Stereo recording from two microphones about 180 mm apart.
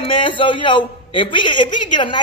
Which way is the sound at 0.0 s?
30° left (ahead or behind).